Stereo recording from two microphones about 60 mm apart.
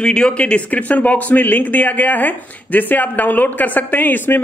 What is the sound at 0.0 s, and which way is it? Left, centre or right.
Speech, centre.